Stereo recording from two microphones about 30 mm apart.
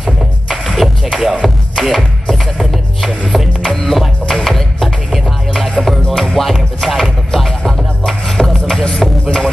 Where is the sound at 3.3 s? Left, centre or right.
Centre.